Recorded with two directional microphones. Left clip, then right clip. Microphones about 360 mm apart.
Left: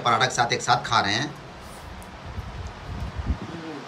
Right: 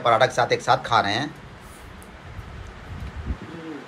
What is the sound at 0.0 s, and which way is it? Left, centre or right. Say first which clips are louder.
Speech: right 3 dB; centre.